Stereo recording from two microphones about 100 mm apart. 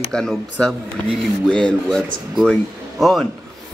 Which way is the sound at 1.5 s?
10° left (ahead or behind).